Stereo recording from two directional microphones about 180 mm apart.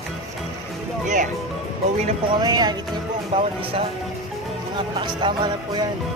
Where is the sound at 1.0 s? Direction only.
45° right (ahead or behind).